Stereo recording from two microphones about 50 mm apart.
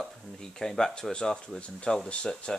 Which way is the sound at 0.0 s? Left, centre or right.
Centre.